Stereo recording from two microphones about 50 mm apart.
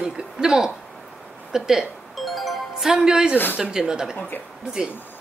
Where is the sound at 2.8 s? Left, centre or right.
Centre.